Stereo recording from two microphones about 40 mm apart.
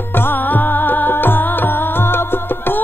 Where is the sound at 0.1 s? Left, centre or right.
Left.